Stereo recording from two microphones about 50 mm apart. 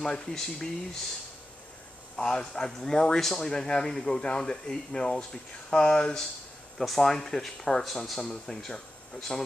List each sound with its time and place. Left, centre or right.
0.0 s speech: centre
2.1 s speech: centre
6.8 s speech: centre